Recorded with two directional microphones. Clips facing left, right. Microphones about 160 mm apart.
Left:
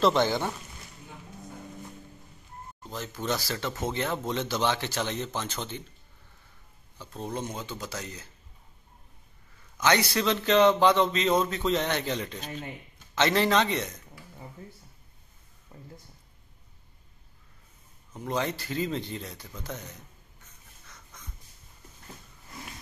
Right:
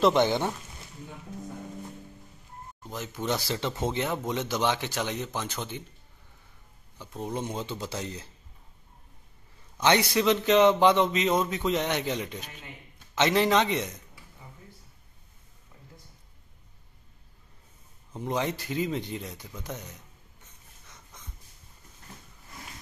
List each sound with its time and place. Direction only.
0.0 s speech: 20° right (ahead or behind)
2.9 s speech: 15° right (ahead or behind)
7.0 s speech: 15° right (ahead or behind)
9.8 s speech: 20° right (ahead or behind)
15.7 s a sound: 50° left (ahead or behind)
18.1 s speech: 20° right (ahead or behind)